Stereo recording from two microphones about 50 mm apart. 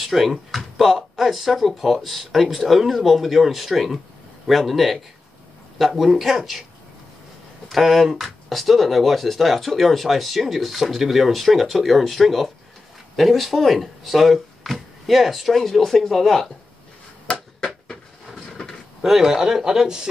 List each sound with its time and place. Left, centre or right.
0.0 s speech: centre
7.7 s speech: centre
17.3 s a sound: left
17.8 s drawer open or close: centre
19.0 s speech: centre